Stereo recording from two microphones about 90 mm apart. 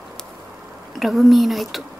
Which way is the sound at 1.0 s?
Centre (ahead or behind).